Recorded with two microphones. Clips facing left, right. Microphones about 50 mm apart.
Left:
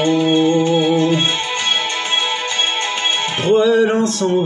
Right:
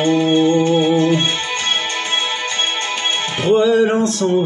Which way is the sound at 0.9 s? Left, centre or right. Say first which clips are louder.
Even; left.